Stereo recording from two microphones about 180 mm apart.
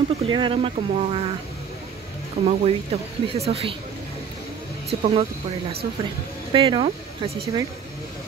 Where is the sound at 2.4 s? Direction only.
35° right (ahead or behind).